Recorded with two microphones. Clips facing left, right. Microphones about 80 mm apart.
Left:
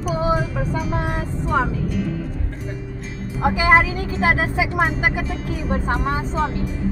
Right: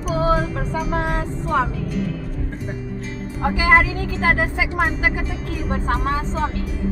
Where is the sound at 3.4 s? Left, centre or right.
Centre.